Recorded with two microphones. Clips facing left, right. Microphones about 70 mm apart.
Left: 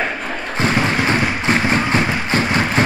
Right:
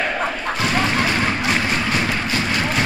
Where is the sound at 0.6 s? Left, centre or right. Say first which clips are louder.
Left 3 dB; left.